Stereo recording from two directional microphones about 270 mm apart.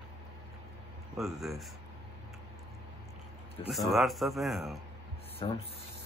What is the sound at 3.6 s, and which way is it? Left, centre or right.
Speech, centre.